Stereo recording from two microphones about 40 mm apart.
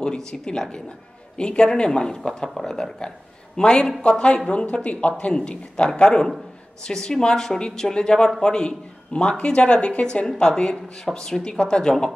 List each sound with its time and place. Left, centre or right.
0.0 s speech: centre
10.2 s speech: centre